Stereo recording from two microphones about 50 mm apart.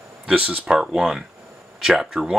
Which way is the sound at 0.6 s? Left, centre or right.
Centre.